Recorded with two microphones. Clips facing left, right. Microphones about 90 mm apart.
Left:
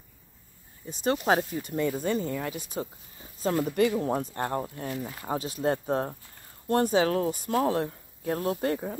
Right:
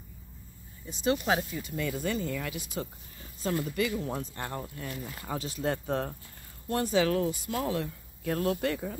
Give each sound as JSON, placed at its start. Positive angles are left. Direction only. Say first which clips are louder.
{"t": 0.8, "sound": "speech", "louder": "left 3 dB", "side_deg": 40}
{"t": 6.7, "sound": "speech", "louder": "left 3 dB", "side_deg": 40}